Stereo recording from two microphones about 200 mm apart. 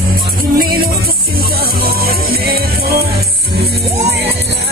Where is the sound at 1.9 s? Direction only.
50° right (ahead or behind).